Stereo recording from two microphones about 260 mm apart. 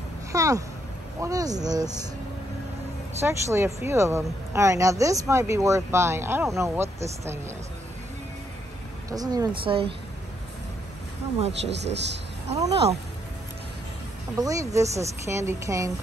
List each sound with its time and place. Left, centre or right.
0.3 s a sound: centre
1.2 s speech: centre
3.2 s speech: centre
9.1 s speech: centre
11.7 s speech: right
12.6 s speech: right
14.4 s speech: centre